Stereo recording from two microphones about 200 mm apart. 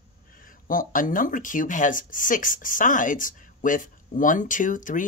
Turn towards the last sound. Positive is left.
turn(degrees=40)  # may be behind; listen again after turning